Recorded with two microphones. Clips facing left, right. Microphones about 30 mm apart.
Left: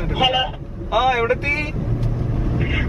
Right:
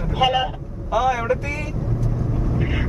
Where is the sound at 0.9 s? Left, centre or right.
Left.